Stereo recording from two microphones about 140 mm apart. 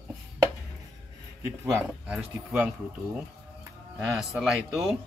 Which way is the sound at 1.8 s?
5° right (ahead or behind).